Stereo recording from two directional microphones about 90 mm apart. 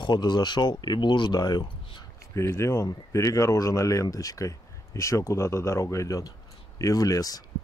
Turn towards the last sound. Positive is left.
turn(degrees=45)  # may be behind; listen again after turning